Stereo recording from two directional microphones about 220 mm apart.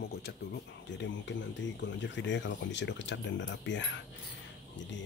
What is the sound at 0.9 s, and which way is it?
Speech, 55° left (ahead or behind).